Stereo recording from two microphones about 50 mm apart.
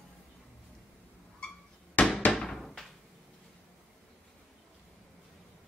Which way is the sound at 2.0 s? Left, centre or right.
Left.